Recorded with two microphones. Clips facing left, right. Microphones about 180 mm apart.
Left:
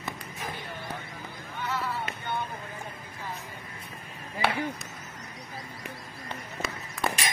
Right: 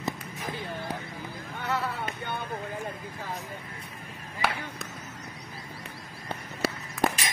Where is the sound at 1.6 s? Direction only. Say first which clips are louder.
Right 2 dB; 60° right (ahead or behind).